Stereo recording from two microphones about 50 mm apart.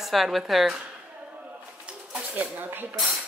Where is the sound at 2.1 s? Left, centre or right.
Right.